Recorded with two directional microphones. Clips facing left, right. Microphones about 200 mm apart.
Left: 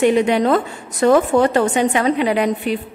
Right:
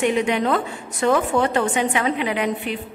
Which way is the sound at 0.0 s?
35° left (ahead or behind).